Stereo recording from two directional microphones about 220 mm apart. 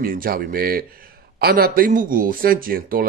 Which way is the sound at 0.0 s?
40° right (ahead or behind).